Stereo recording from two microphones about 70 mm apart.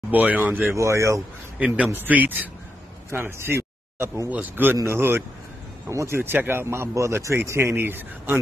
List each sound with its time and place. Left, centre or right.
0.1 s speech: right
0.7 s speech: right
2.0 s speech: right
3.1 s speech: right
4.3 s speech: right
4.8 s a man's voice: right